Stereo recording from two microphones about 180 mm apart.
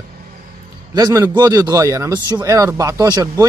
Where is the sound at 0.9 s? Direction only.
20° right (ahead or behind).